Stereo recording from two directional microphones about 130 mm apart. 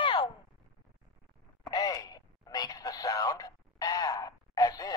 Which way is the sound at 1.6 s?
30° left (ahead or behind).